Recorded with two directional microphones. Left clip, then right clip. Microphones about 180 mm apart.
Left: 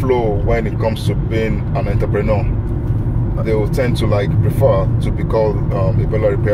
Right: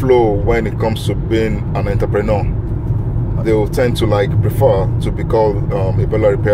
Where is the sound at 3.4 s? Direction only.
35° right (ahead or behind).